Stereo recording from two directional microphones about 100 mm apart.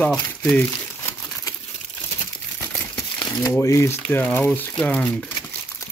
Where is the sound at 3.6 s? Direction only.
30° left (ahead or behind); by 5.0 s 10° left (ahead or behind).